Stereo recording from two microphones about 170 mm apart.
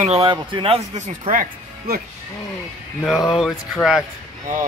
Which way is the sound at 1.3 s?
50° right (ahead or behind).